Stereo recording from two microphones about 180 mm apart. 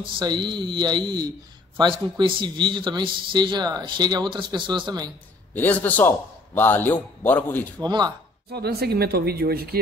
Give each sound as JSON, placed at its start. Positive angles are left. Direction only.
{"t": 0.0, "sound": "a man's voice", "side_deg": -25}
{"t": 5.5, "sound": "a man's voice", "side_deg": 10}
{"t": 7.8, "sound": "a man's voice", "side_deg": -20}
{"t": 8.5, "sound": "speech", "side_deg": -60}